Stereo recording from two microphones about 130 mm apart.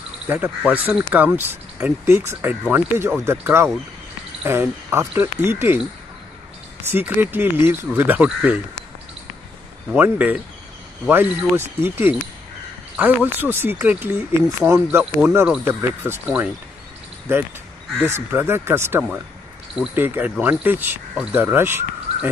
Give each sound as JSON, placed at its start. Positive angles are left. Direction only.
{"t": 0.3, "sound": "speech", "side_deg": -15}
{"t": 6.9, "sound": "speech", "side_deg": -15}
{"t": 9.9, "sound": "speech", "side_deg": -15}
{"t": 17.9, "sound": "speech", "side_deg": -15}